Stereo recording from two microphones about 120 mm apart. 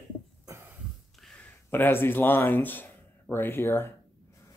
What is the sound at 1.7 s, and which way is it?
Speech, 20° left (ahead or behind).